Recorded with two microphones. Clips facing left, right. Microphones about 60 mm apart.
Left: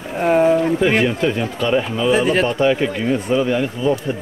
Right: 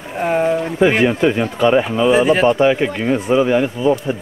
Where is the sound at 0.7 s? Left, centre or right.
Centre.